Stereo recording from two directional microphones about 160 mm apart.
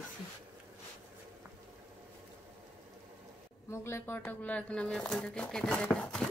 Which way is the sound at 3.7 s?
15° left (ahead or behind).